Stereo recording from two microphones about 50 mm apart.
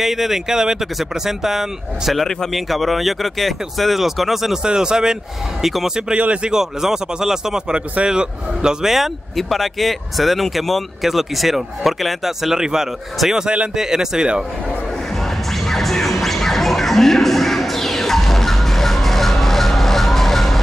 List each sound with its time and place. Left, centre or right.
0.0 s speech: centre
6.1 s speech: right
6.5 s speech: centre
15.5 s music: centre